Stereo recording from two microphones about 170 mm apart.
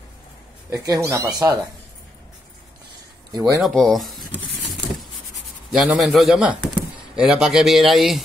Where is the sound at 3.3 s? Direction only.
25° right (ahead or behind).